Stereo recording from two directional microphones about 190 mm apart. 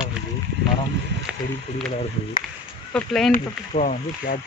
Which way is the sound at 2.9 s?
Centre (ahead or behind).